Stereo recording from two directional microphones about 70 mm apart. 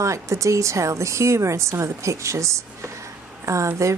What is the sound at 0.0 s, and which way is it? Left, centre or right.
Speech, right.